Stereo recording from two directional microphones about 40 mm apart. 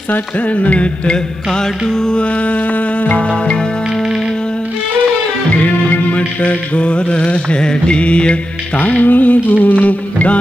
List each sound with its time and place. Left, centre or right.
0.1 s music: left
1.5 s music: centre
2.2 s music: left
3.3 s music: left
5.6 s music: left
8.7 s music: left